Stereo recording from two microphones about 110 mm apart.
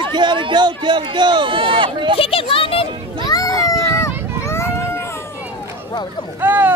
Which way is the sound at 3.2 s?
35° left (ahead or behind).